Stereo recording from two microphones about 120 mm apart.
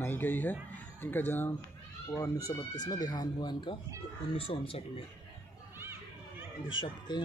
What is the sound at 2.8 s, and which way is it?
Speech, 30° left (ahead or behind).